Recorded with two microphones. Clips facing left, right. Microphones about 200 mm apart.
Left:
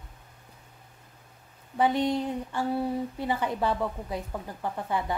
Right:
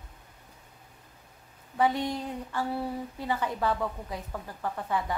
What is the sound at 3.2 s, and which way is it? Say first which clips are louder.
A woman's voice: right 1 dB; 15° left (ahead or behind).